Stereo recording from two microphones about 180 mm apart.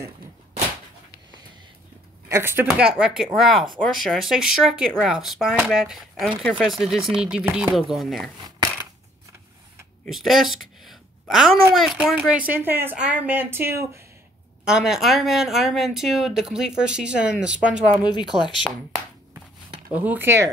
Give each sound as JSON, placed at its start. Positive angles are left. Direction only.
{"t": 2.2, "sound": "speech", "side_deg": -15}
{"t": 10.0, "sound": "a sound", "side_deg": 0}
{"t": 11.7, "sound": "speech", "side_deg": 0}
{"t": 14.6, "sound": "speech", "side_deg": -5}
{"t": 18.3, "sound": "speech", "side_deg": -40}
{"t": 19.9, "sound": "speech", "side_deg": -10}